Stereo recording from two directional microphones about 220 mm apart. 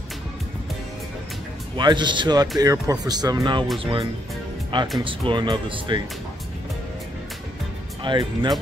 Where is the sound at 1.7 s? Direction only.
20° right (ahead or behind).